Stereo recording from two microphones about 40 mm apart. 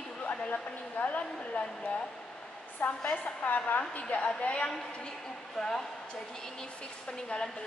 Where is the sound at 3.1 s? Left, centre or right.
Left.